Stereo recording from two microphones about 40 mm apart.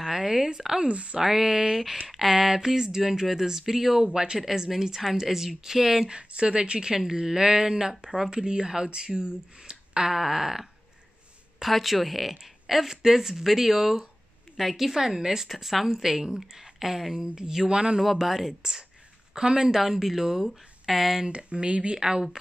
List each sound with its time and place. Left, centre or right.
0.0 s speech: centre
0.8 s a woman's voice: right
1.2 s speech: centre
4.0 s a woman's voice: centre
4.4 s speech: centre
6.0 s a woman's voice: right
18.1 s a woman's voice: centre
19.8 s speech: centre
21.3 s a woman's voice: right